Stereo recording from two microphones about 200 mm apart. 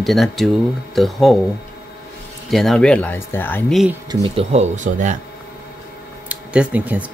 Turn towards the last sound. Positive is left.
turn(degrees=-5)  # may be behind; listen again after turning